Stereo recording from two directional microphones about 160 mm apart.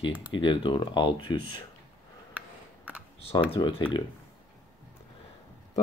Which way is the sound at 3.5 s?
30° left (ahead or behind).